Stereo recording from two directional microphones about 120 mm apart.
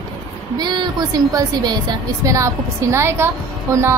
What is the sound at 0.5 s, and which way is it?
A woman's voice, 35° right (ahead or behind).